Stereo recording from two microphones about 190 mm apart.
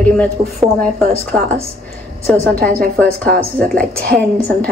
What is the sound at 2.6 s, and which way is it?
A woman's voice, 50° right (ahead or behind).